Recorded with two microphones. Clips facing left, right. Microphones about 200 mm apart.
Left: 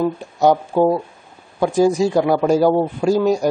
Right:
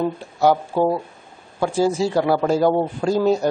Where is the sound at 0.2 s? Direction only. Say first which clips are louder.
Left 2 dB; 15° left (ahead or behind).